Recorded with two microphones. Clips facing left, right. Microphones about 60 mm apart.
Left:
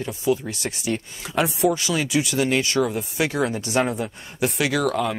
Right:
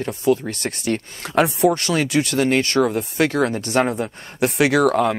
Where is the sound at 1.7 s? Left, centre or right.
Right.